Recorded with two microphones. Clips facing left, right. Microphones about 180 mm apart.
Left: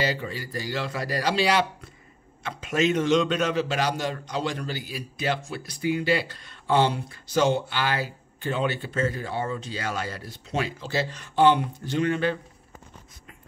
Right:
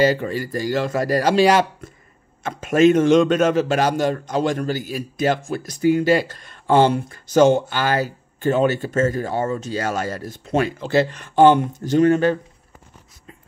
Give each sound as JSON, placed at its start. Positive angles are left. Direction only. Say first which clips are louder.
{"t": 0.0, "sound": "a man's voice", "louder": "right 10 dB", "side_deg": -50}